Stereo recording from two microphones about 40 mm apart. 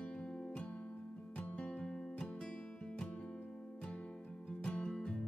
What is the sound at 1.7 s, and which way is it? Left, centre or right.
Music, centre.